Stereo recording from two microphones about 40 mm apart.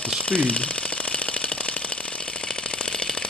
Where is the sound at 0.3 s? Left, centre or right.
Left.